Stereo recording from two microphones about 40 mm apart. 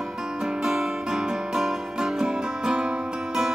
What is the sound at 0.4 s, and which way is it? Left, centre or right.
Music, centre.